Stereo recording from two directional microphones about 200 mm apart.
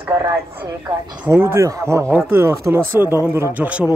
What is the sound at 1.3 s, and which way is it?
Speech, 10° right (ahead or behind).